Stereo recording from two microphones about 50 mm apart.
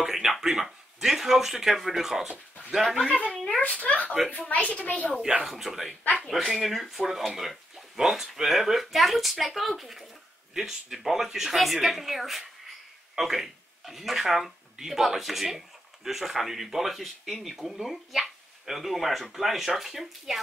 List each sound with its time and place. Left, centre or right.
0.0 s speech: centre
3.1 s a child's voice: centre
5.4 s speech: centre